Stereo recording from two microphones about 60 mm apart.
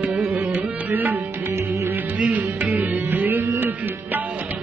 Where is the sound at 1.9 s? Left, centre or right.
Right.